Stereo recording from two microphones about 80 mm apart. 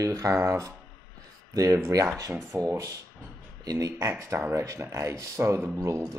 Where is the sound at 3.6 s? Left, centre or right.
Right.